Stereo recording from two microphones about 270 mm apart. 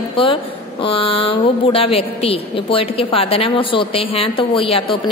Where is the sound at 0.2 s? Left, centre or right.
Centre.